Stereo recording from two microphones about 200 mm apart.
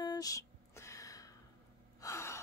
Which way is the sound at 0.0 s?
20° left (ahead or behind).